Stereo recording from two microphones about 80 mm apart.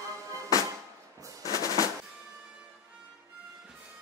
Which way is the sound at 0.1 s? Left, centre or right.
Right.